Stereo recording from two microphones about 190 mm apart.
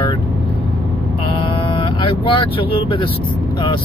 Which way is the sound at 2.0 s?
30° left (ahead or behind).